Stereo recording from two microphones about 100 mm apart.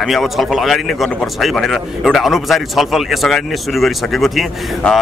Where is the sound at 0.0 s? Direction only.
Centre (ahead or behind).